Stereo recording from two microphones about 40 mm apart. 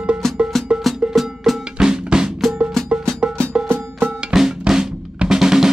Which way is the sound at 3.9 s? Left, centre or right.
Right.